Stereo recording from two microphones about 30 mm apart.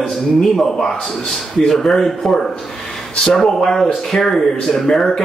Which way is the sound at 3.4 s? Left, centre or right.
Centre.